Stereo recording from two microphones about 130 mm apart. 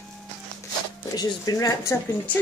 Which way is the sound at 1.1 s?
30° left (ahead or behind).